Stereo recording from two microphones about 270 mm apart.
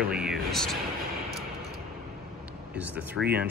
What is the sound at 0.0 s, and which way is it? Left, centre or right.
Speech, centre.